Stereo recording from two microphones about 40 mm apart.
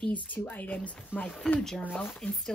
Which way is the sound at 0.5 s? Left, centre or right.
Left.